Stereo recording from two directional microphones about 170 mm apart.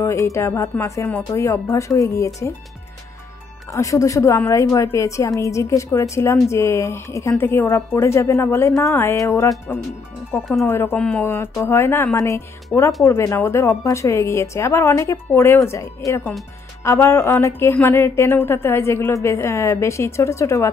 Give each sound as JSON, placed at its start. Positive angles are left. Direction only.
{"t": 0.0, "sound": "a woman's voice", "side_deg": 15}
{"t": 3.7, "sound": "a woman's voice", "side_deg": 20}